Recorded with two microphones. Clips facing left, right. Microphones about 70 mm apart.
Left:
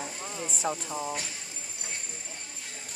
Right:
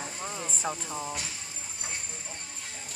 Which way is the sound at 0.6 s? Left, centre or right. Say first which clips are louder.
Left 3 dB; centre.